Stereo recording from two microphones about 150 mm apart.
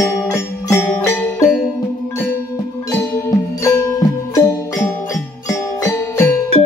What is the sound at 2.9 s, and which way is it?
Music, 20° left (ahead or behind).